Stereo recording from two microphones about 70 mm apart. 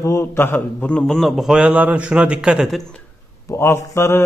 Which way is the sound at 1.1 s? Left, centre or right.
Centre.